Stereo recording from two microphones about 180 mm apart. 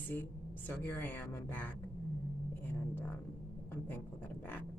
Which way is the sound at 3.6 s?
10° left (ahead or behind).